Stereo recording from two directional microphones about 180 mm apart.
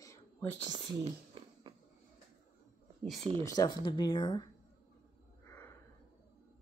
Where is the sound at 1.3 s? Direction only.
25° right (ahead or behind).